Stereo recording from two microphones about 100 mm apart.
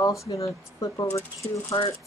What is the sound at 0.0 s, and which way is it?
Speech, 30° left (ahead or behind).